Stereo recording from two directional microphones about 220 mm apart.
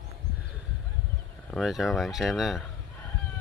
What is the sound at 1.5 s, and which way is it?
Speech, centre (ahead or behind).